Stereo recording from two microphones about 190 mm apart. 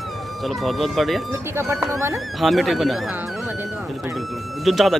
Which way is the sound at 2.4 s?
Centre (ahead or behind).